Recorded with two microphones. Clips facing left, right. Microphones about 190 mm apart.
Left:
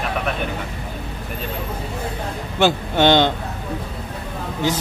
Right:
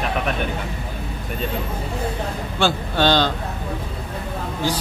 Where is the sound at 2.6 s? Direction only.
20° left (ahead or behind).